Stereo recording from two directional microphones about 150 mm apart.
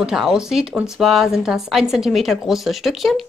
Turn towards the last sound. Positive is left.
turn(degrees=0)  # may be behind; listen again after turning